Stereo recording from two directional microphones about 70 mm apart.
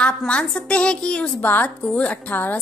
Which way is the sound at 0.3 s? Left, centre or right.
Centre.